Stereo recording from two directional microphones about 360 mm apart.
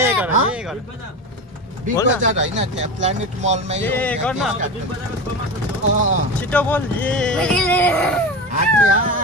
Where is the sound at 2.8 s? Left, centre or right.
Centre.